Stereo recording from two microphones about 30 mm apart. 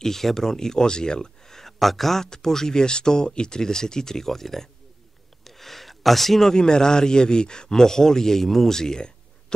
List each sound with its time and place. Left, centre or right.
0.0 s speech: centre
2.2 s a man's voice: centre
5.4 s a sound: centre
6.5 s a man's voice: left